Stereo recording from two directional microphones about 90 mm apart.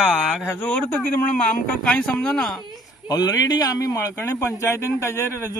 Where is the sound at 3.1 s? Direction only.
45° left (ahead or behind).